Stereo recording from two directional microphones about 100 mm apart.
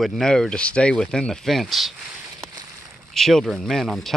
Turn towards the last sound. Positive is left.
turn(degrees=0)  # may be behind; listen again after turning